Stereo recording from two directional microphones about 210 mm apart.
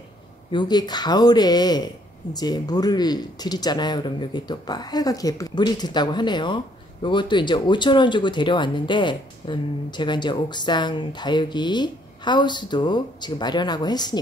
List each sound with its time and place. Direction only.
0.5 s speech: 20° left (ahead or behind)